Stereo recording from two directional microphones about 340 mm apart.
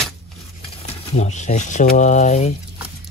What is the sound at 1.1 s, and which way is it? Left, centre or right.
Speech, centre.